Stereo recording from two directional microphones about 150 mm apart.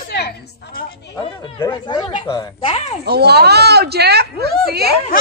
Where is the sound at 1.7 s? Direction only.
30° left (ahead or behind).